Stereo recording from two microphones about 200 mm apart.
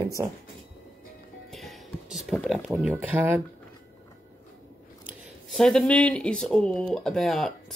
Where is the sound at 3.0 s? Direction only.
10° right (ahead or behind).